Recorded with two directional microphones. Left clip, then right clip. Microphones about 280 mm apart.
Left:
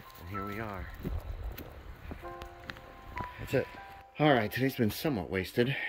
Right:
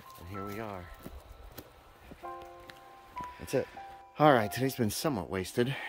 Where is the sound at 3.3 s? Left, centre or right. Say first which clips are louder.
Even; centre.